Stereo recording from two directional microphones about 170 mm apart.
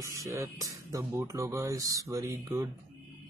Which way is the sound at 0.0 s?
20° right (ahead or behind).